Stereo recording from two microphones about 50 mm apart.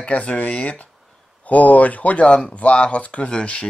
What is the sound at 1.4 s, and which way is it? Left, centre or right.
Speech, left.